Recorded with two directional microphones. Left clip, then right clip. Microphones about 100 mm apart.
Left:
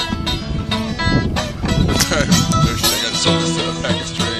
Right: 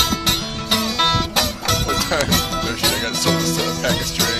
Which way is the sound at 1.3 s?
30° right (ahead or behind).